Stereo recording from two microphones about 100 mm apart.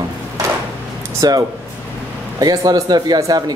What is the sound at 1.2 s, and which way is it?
A man's voice, 40° right (ahead or behind).